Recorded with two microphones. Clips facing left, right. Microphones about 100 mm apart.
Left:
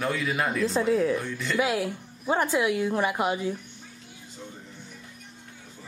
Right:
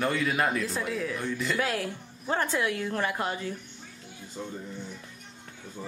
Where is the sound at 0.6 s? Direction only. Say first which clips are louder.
Left 8 dB; 30° left (ahead or behind).